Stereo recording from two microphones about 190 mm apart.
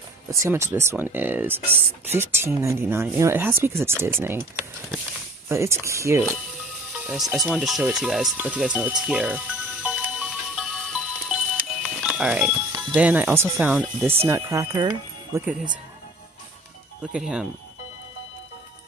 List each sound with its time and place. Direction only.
0.3 s speech: 15° right (ahead or behind)
7.1 s speech: centre (ahead or behind)
9.8 s music: 5° right (ahead or behind)
12.7 s speech: 10° right (ahead or behind)
17.0 s speech: 5° right (ahead or behind)